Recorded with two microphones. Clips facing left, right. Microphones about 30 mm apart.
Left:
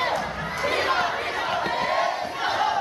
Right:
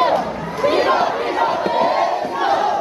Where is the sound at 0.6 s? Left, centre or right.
Right.